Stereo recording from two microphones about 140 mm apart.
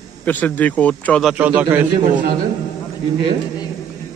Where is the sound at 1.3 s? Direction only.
10° right (ahead or behind).